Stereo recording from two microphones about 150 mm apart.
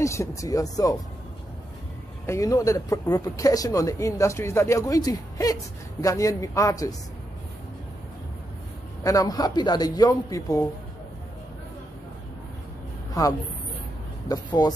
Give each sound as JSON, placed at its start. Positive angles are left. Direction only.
{"t": 0.0, "sound": "speech", "side_deg": 20}
{"t": 2.2, "sound": "speech", "side_deg": 20}
{"t": 9.0, "sound": "speech", "side_deg": 25}
{"t": 14.2, "sound": "speech", "side_deg": 25}